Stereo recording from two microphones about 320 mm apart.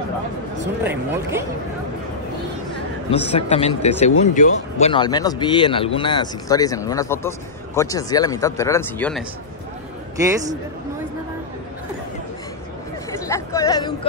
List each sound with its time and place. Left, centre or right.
0.8 s speech: centre
3.1 s speech: centre
10.2 s speech: centre
13.1 s chatter: centre